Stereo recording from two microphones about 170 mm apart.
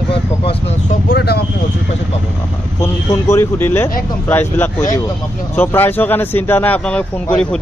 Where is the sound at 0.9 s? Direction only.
65° left (ahead or behind).